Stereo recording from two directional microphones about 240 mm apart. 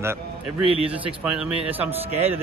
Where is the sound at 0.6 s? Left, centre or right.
Right.